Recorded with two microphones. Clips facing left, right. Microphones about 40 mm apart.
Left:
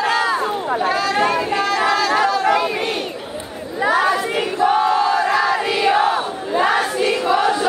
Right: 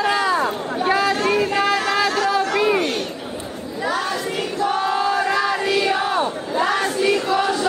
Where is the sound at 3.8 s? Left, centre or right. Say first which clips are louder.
Left 6 dB; centre.